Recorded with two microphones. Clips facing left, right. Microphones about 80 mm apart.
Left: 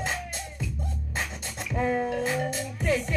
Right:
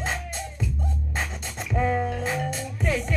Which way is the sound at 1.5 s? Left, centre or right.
Right.